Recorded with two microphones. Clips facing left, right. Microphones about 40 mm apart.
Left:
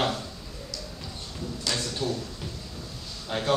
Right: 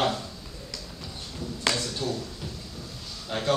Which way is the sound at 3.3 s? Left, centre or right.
Centre.